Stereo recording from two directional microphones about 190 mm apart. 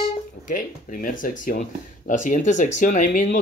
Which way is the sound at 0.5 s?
45° left (ahead or behind).